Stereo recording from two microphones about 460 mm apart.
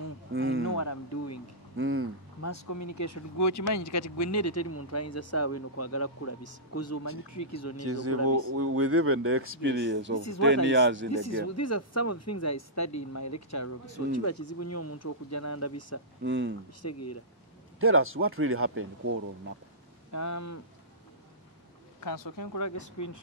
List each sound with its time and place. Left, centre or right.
0.3 s a sound: right
0.7 s speech: left
1.8 s speech: right
2.4 s speech: left
7.8 s speech: right
11.1 s speech: left
16.3 s speech: right
16.8 s speech: left
17.7 s speech: right
20.1 s speech: left
22.0 s speech: left